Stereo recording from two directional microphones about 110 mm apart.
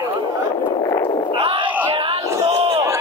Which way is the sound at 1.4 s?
55° right (ahead or behind).